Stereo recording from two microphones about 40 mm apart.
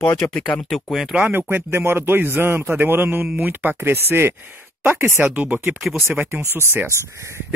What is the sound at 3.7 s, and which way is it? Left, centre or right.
Speech, right.